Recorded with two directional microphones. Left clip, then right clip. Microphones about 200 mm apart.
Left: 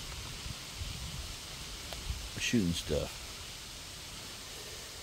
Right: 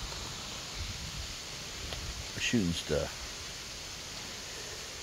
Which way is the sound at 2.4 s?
20° left (ahead or behind).